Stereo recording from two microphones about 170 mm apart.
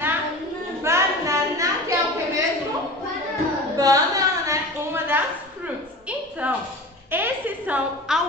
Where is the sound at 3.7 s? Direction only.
20° right (ahead or behind).